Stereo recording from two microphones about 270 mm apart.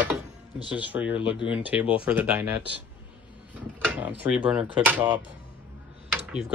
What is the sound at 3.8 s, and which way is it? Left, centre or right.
Drawer open or close, centre.